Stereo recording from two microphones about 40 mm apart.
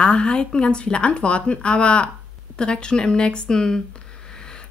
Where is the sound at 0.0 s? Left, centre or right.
Left.